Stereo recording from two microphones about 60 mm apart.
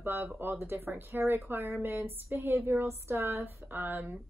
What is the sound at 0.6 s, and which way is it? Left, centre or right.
A woman's voice, right.